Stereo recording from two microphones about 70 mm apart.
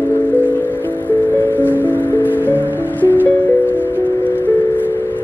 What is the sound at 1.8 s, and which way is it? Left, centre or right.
Music, left.